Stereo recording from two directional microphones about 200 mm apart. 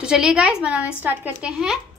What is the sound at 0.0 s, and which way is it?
A woman's voice, 5° right (ahead or behind).